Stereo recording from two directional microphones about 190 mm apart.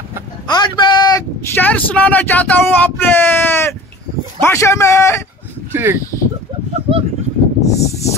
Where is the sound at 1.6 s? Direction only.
10° left (ahead or behind).